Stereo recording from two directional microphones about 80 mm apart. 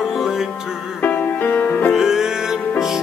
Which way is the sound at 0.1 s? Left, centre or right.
Centre.